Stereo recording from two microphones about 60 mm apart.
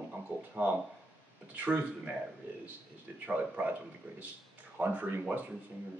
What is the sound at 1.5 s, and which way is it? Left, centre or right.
Speech, right.